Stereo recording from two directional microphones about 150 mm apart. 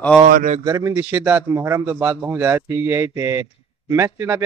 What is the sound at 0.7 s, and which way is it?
Speech, 20° right (ahead or behind).